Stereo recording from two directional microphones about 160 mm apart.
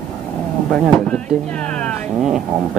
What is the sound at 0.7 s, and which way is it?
Speech, centre (ahead or behind).